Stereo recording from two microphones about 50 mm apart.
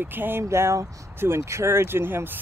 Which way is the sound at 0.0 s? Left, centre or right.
Right.